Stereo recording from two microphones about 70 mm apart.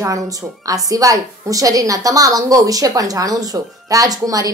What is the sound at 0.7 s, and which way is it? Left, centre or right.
A woman's voice, right.